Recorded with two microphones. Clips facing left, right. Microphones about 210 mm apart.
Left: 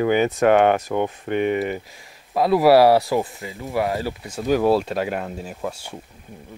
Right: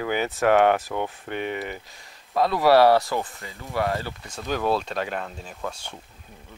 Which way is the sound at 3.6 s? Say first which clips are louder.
Left 3 dB; 15° left (ahead or behind).